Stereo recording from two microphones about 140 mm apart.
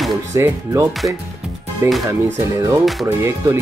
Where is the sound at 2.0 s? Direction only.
20° right (ahead or behind).